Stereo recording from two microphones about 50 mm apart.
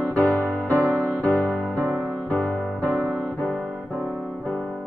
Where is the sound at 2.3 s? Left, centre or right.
Left.